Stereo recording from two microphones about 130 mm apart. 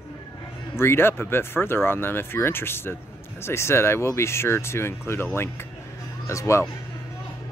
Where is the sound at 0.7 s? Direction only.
20° left (ahead or behind).